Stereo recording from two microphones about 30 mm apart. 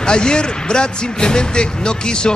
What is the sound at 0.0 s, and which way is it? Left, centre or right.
Speech, left.